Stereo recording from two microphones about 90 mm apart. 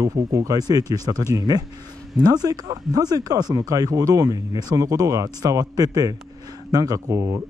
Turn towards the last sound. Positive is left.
turn(degrees=-35)  # may be behind; listen again after turning